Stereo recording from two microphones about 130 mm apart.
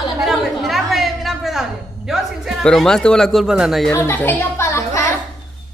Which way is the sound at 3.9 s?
15° left (ahead or behind).